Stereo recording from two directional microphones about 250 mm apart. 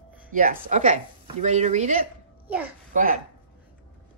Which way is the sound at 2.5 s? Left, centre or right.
Centre.